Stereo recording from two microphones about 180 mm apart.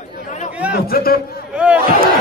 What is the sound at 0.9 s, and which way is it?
Speech, 55° left (ahead or behind).